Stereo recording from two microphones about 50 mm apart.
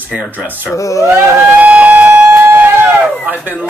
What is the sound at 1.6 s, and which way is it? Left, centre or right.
Music, right.